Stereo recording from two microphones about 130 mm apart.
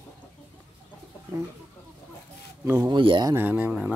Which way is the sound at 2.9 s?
40° right (ahead or behind).